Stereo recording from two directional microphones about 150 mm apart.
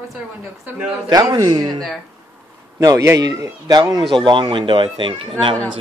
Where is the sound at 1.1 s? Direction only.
25° right (ahead or behind).